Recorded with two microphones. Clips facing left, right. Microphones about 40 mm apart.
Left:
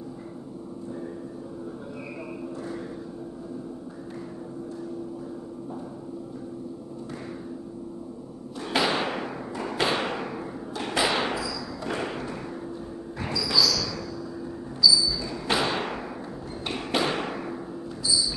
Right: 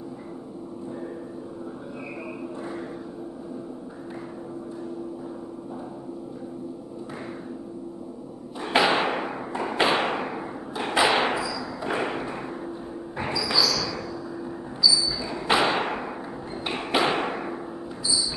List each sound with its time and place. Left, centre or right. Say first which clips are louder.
8.6 s a sound: right 4 dB; right
14.8 s basketball bounce: left 1 dB; right
16.6 s thump: right 3 dB; right